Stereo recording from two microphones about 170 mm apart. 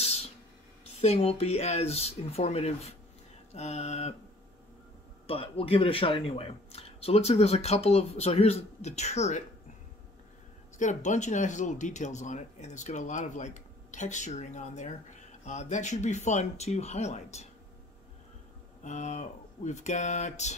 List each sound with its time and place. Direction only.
1.0 s speech: 40° left (ahead or behind)
5.2 s speech: 35° left (ahead or behind)
10.8 s speech: 45° left (ahead or behind)
18.9 s speech: 45° left (ahead or behind)